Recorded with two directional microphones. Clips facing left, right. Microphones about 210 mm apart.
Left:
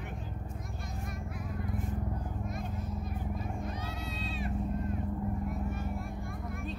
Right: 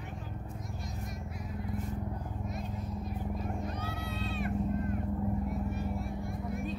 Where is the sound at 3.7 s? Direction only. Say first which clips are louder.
Right 1 dB; 60° right (ahead or behind).